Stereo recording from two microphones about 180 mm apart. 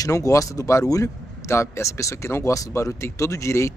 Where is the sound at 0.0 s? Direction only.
20° left (ahead or behind).